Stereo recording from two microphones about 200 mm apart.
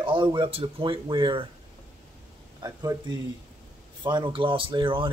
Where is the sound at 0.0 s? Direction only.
25° right (ahead or behind).